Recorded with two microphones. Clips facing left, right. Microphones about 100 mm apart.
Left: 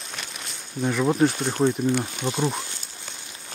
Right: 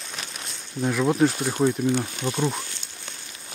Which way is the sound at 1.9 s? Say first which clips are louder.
Even; 10° left (ahead or behind).